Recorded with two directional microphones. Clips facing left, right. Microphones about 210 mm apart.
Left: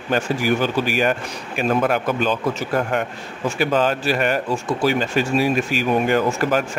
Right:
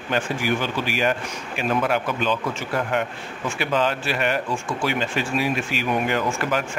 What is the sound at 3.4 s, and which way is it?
Speech, 40° left (ahead or behind).